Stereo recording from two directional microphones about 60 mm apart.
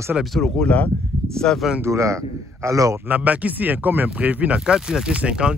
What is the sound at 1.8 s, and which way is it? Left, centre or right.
Speech, right.